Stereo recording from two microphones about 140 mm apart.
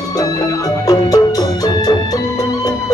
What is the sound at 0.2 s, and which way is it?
Music, 25° left (ahead or behind).